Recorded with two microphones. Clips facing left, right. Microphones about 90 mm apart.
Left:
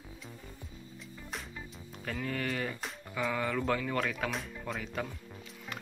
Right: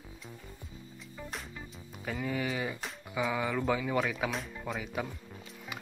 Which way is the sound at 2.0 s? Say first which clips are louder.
Right 2 dB; 10° right (ahead or behind).